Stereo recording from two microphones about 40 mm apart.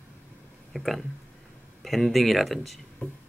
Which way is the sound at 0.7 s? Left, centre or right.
Centre.